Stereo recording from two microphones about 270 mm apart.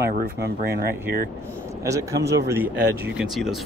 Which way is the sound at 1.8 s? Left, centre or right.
Centre.